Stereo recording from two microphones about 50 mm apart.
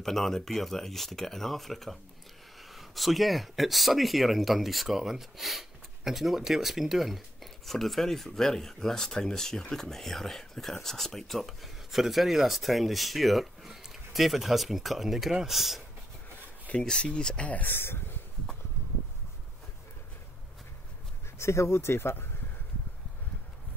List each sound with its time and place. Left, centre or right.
0.0 s speech: centre
16.8 s speech: centre
17.5 s speech: left
17.7 s speech: left
21.4 s speech: left